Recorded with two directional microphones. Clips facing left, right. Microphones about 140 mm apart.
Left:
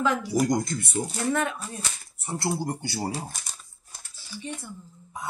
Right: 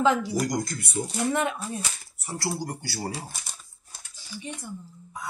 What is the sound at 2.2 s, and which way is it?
Speech, 25° left (ahead or behind).